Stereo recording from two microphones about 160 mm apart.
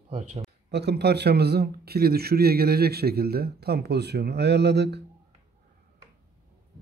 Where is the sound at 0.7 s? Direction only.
90° right.